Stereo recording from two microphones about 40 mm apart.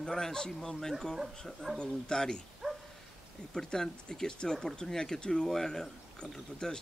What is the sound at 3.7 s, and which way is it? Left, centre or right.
Speech, centre.